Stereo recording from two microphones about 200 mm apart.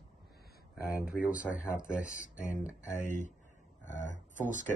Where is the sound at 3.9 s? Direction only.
35° right (ahead or behind).